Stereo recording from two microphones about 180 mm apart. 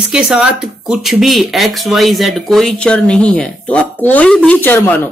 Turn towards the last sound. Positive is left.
turn(degrees=10)  # may be behind; listen again after turning